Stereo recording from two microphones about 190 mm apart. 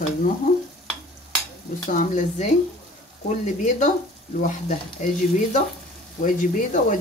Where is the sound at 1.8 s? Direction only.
40° left (ahead or behind).